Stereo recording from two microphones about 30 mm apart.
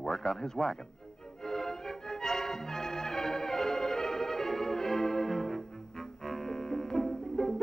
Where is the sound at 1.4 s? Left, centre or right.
Centre.